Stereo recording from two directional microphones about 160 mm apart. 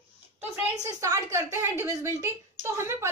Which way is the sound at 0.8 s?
20° right (ahead or behind).